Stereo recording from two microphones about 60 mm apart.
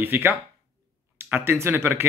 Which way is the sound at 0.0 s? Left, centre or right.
Right.